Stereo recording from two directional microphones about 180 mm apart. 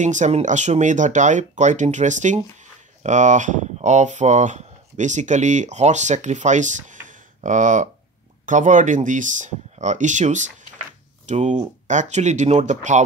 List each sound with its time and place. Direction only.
0.0 s speech: 40° right (ahead or behind)